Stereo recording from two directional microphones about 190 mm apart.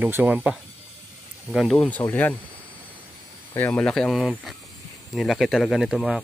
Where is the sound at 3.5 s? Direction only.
10° left (ahead or behind).